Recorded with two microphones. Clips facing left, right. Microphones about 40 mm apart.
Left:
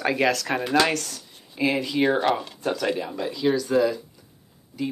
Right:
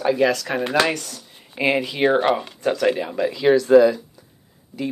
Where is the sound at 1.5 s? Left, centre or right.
Right.